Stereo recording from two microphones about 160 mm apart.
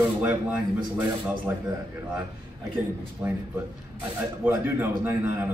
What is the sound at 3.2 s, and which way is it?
Speech, 10° right (ahead or behind).